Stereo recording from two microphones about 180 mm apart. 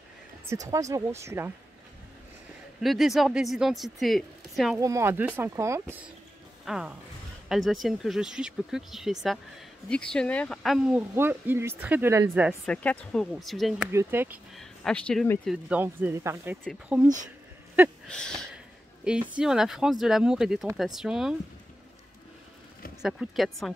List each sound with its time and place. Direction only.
0.7 s speech: 15° right (ahead or behind)
2.8 s speech: centre (ahead or behind)
4.7 s speech: 15° right (ahead or behind)
6.6 s speech: 5° right (ahead or behind)
11.1 s speech: 10° right (ahead or behind)
12.6 s speech: 5° left (ahead or behind)
13.9 s speech: 10° right (ahead or behind)
14.5 s speech: centre (ahead or behind)
15.7 s speech: 10° right (ahead or behind)
18.0 s a sound: 5° left (ahead or behind)
19.0 s speech: 5° right (ahead or behind)
23.0 s speech: centre (ahead or behind)